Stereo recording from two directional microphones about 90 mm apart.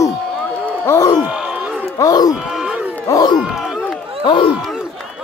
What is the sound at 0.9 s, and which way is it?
Speech, 50° left (ahead or behind).